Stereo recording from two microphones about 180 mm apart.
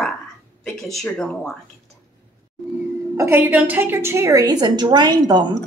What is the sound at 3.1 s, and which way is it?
A woman's voice, 10° right (ahead or behind).